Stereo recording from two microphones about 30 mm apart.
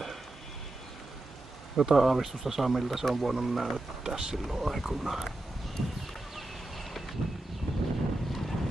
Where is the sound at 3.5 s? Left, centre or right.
Centre.